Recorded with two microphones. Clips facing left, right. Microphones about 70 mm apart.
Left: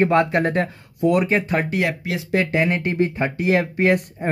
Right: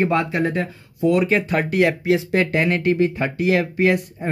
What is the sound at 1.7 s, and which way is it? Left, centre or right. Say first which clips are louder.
Speech: right 6 dB; centre.